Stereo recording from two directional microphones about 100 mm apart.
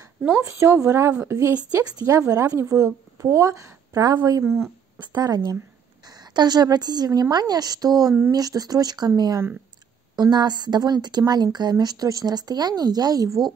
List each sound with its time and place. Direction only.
0.2 s a woman's voice: 25° right (ahead or behind)
4.0 s a woman's voice: 45° right (ahead or behind)
4.4 s a woman's voice: 30° right (ahead or behind)
4.9 s a woman's voice: 45° right (ahead or behind)